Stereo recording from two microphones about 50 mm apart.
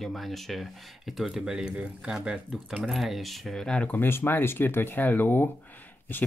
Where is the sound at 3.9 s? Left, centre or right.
Left.